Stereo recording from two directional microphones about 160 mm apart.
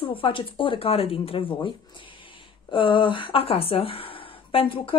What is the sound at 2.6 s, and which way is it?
A woman's voice, 30° left (ahead or behind).